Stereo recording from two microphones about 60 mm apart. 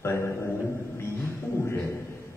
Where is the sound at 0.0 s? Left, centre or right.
Left.